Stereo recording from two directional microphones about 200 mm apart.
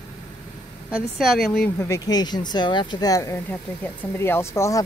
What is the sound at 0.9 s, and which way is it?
A woman's voice, centre (ahead or behind).